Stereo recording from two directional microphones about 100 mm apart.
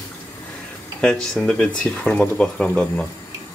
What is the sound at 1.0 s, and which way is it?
Speech, 5° left (ahead or behind).